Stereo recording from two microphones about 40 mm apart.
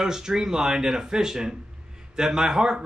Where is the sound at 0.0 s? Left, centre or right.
Centre.